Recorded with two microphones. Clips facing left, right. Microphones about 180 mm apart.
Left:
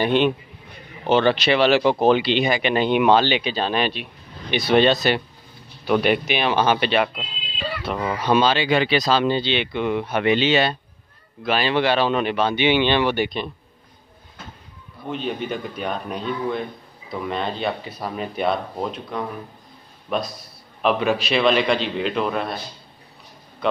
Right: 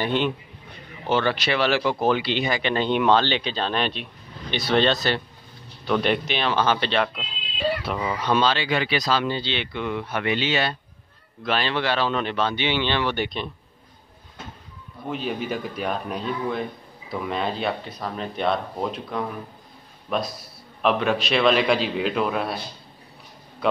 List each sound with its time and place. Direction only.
0.0 s speech: 20° left (ahead or behind)
11.4 s speech: 5° left (ahead or behind)
11.7 s speech: 20° left (ahead or behind)
15.0 s a man's voice: 5° right (ahead or behind)
23.6 s speech: 5° right (ahead or behind)